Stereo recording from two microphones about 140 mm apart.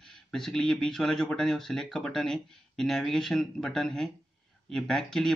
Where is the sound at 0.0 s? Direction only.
5° left (ahead or behind).